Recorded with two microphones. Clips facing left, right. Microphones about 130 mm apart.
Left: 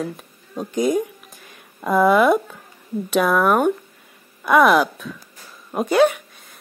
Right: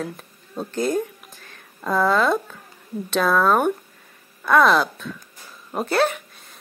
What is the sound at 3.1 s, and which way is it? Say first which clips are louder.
A woman's voice: left 1 dB; 10° left (ahead or behind).